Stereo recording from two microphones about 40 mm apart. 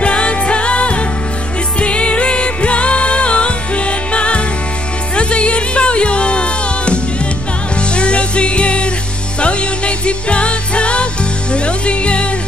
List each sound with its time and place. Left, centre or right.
0.0 s music: left